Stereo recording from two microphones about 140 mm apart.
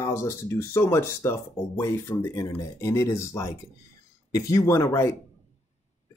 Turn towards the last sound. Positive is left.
turn(degrees=20)  # may be behind; listen again after turning